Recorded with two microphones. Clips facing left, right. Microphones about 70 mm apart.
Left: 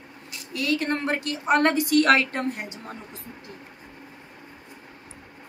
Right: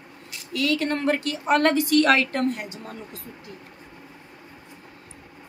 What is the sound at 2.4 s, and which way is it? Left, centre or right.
Speech, left.